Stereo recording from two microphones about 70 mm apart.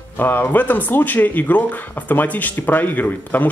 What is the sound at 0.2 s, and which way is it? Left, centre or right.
Speech, left.